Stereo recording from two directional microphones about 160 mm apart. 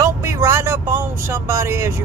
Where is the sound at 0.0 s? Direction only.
15° right (ahead or behind).